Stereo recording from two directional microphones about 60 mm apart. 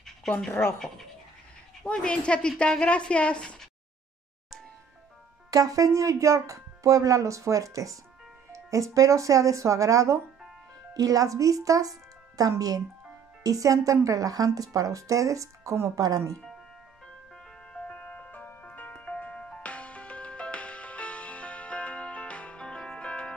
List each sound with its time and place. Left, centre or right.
0.5 s speech: left
1.9 s speech: centre
5.5 s speech: right
10.9 s speech: right
13.4 s speech: right
16.0 s speech: right
17.7 s music: left